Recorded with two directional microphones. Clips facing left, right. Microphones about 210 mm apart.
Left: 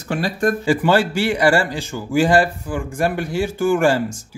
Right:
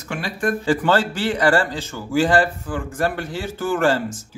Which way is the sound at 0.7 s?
10° left (ahead or behind).